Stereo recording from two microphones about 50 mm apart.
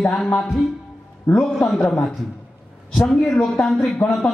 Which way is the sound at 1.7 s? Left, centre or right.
Centre.